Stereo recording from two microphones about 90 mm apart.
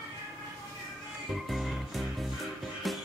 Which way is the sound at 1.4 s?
Centre (ahead or behind).